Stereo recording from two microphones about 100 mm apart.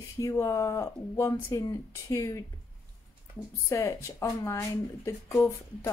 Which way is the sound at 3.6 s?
30° left (ahead or behind).